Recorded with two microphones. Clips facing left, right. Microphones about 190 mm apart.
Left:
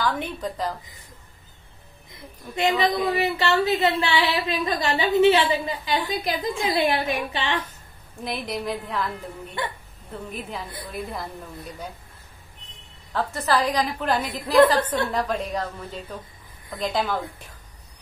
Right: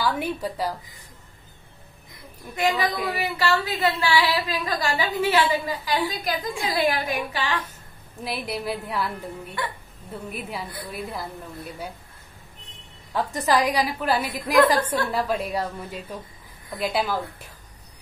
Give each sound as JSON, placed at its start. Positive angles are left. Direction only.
{"t": 0.0, "sound": "a woman's voice", "side_deg": -10}
{"t": 2.5, "sound": "a woman's voice", "side_deg": 25}
{"t": 8.2, "sound": "a woman's voice", "side_deg": -5}
{"t": 10.3, "sound": "a woman's voice", "side_deg": -10}
{"t": 13.1, "sound": "a woman's voice", "side_deg": -15}